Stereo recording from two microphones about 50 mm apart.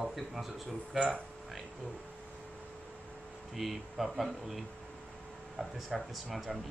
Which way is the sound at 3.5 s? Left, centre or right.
Centre.